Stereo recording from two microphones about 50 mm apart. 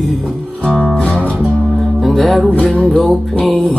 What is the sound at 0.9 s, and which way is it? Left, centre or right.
Music, left.